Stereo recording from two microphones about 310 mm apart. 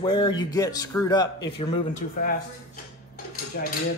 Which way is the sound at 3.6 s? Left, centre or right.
Left.